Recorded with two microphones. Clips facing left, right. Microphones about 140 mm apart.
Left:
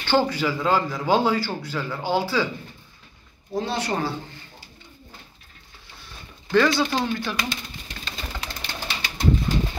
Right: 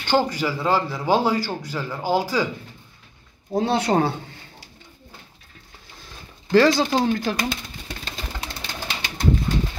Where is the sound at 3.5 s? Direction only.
60° right (ahead or behind).